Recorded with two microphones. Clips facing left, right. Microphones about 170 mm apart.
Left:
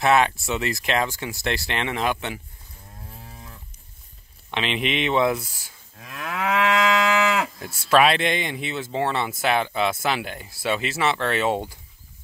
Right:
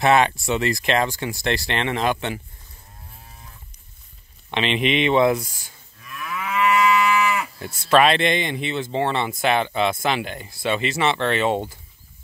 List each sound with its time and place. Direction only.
0.0 s speech: 5° left (ahead or behind)
3.1 s cattle: 75° left (ahead or behind)
4.5 s speech: centre (ahead or behind)
5.9 s moo: 85° left
7.7 s speech: 10° left (ahead or behind)